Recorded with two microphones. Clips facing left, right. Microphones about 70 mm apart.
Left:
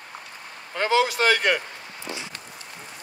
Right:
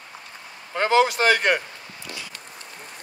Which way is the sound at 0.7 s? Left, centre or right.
Right.